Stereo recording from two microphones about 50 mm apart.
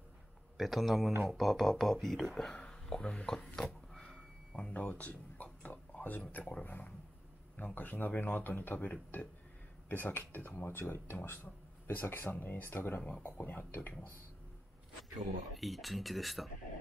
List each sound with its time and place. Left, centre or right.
0.6 s speech: centre
2.5 s speech: centre
3.5 s a sound: centre
7.5 s speech: left
11.9 s speech: left
15.1 s speech: centre